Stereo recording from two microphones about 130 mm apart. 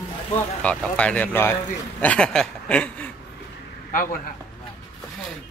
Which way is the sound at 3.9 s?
90° left.